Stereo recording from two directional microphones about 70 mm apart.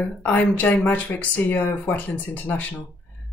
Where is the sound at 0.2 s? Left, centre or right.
Left.